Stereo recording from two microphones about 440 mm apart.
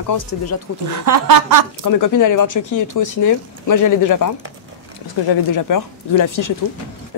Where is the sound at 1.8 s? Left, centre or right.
Left.